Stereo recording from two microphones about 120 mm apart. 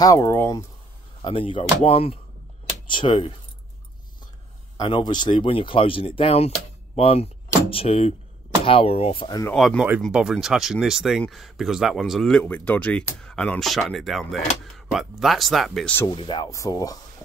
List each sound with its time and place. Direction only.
0.0 s speech: 30° left (ahead or behind)
1.2 s speech: 45° left (ahead or behind)
4.7 s speech: 40° left (ahead or behind)
9.5 s speech: 5° left (ahead or behind)
16.1 s speech: 40° left (ahead or behind)
16.4 s speech: 30° left (ahead or behind)